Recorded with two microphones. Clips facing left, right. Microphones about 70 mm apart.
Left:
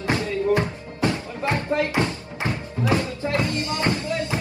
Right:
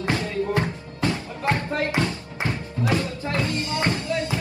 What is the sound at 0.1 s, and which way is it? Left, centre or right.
Music, left.